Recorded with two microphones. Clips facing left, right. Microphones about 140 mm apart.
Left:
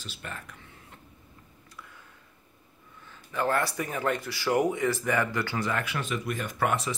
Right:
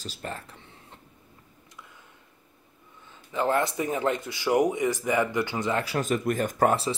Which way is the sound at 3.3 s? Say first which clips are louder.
Right 2 dB; 20° right (ahead or behind).